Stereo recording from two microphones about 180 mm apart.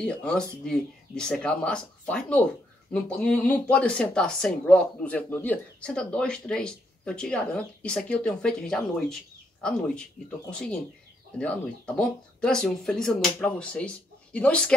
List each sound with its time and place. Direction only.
0.0 s speech: 5° left (ahead or behind)